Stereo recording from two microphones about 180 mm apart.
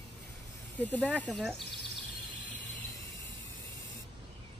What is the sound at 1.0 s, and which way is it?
Speech, 10° left (ahead or behind).